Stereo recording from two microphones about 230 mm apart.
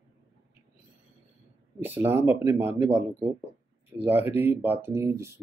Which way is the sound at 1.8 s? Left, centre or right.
Centre.